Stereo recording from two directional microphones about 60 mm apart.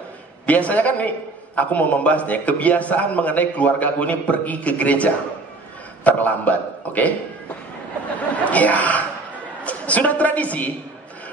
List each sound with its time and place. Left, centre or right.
0.5 s a man's voice: left
8.5 s a man's voice: left